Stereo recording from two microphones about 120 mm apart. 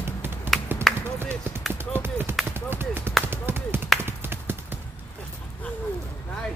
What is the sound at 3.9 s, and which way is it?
Tap, 20° right (ahead or behind).